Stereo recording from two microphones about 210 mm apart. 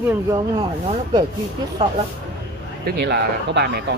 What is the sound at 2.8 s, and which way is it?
Speech, 55° right (ahead or behind).